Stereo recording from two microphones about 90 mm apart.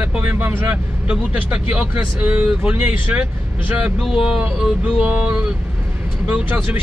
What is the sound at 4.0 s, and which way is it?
Speech, 5° right (ahead or behind).